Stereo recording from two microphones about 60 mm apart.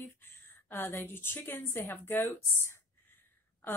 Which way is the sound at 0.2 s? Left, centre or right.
Left.